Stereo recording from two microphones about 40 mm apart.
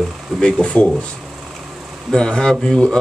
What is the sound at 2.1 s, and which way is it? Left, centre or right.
Speech, centre.